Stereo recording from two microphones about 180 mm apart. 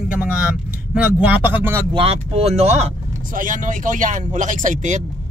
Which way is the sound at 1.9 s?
30° right (ahead or behind).